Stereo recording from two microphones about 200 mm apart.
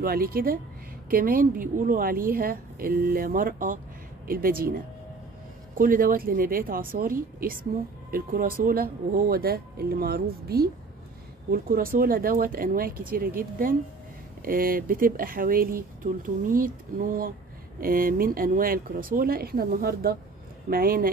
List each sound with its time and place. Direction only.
0.0 s speech: 50° right (ahead or behind)